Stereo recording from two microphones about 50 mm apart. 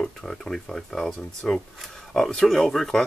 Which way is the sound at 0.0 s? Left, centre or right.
Centre.